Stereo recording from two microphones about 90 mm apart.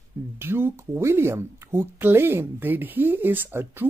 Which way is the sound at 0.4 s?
25° right (ahead or behind).